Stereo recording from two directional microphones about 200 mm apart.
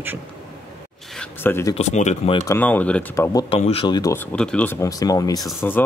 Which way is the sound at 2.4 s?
10° left (ahead or behind).